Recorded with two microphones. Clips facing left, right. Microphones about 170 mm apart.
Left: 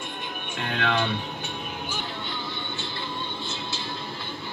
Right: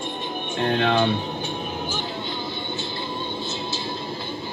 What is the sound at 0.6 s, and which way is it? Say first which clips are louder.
Speech: right 6 dB; 30° right (ahead or behind).